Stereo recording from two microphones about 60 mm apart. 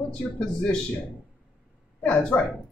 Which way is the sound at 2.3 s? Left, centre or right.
Left.